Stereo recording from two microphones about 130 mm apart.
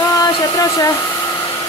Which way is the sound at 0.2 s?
25° left (ahead or behind).